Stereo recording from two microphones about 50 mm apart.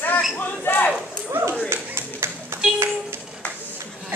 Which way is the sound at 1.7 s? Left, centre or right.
Right.